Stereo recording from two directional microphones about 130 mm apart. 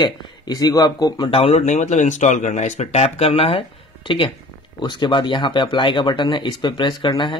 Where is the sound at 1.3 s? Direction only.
50° left (ahead or behind).